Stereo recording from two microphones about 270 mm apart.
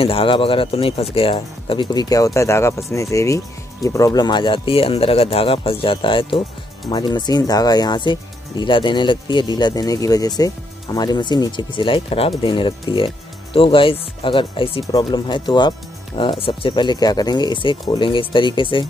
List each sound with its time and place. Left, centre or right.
0.0 s speech: centre